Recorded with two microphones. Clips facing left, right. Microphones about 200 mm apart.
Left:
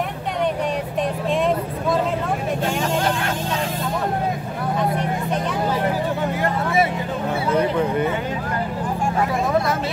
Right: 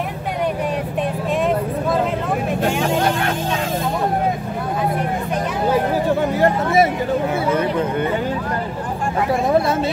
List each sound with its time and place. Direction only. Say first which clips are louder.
6.4 s vehicle: right 5 dB; 40° right (ahead or behind)